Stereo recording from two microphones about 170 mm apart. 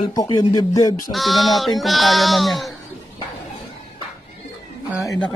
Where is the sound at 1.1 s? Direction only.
Centre (ahead or behind).